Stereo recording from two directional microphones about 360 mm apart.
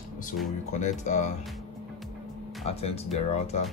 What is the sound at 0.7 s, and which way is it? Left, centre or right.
Speech, centre.